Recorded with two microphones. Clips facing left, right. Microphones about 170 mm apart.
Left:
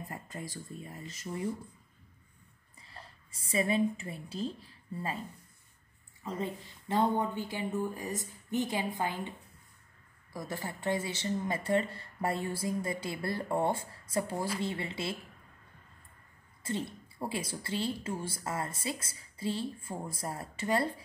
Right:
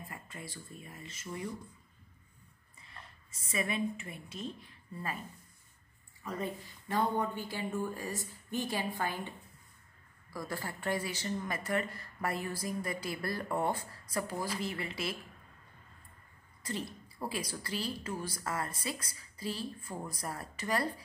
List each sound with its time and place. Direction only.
0.1 s speech: 40° left (ahead or behind)
2.8 s a woman's voice: 30° left (ahead or behind)
6.2 s speech: 25° left (ahead or behind)
10.3 s speech: 20° left (ahead or behind)
16.6 s speech: 25° left (ahead or behind)